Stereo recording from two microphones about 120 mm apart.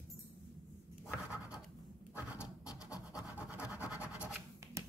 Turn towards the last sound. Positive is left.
turn(degrees=-10)  # may be behind; listen again after turning